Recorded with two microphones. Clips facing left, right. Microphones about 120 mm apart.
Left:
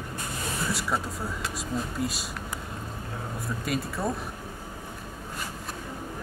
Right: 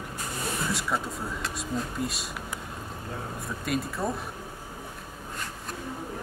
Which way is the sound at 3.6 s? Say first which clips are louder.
Right 1 dB; centre (ahead or behind).